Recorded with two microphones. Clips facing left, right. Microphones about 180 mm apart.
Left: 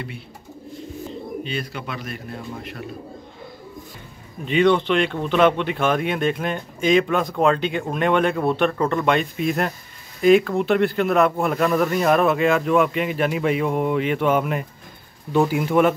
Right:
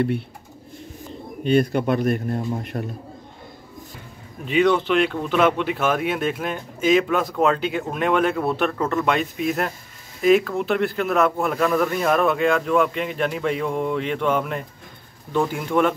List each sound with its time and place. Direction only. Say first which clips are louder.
1.4 s a man's voice: right 11 dB; 50° right (ahead or behind)
4.5 s speech: left 1 dB; 5° right (ahead or behind)